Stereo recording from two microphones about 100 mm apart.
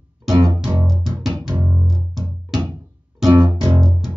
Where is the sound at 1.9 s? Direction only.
Centre (ahead or behind).